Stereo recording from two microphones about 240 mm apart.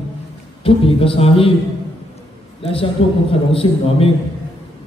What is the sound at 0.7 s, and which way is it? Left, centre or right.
Speech, left.